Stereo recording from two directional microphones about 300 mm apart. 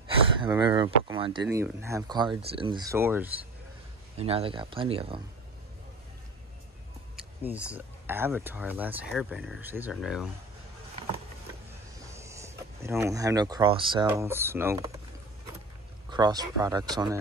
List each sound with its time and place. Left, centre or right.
0.4 s speech: centre
4.2 s speech: centre
7.4 s speech: centre
12.1 s speech: centre
16.1 s speech: centre